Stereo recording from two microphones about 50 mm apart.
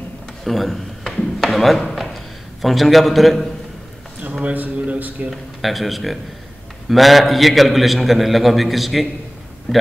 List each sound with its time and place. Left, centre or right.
0.4 s a sound: centre
1.1 s speech: centre
4.2 s a man's voice: right
5.3 s a man's voice: centre